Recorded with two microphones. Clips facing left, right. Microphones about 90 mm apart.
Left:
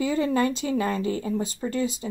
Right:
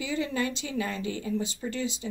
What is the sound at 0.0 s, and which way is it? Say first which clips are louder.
Speech: left 7 dB; 40° left (ahead or behind).